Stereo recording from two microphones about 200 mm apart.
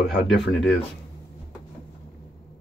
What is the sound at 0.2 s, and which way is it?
Speech, centre (ahead or behind).